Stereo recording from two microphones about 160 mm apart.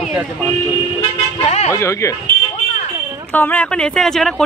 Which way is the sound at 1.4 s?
45° left (ahead or behind).